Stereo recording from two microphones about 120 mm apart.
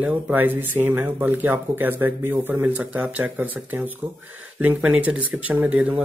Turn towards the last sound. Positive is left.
turn(degrees=-10)  # may be behind; listen again after turning